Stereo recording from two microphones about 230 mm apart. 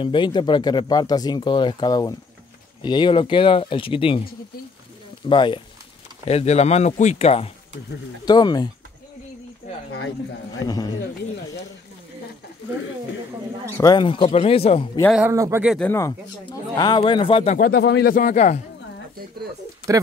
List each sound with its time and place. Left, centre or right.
0.0 s speech: left
5.3 s speech: left
10.6 s speech: centre
13.7 s speech: centre
15.0 s speech: centre
15.2 s speech: centre
15.8 s speech: centre
17.6 s speech: left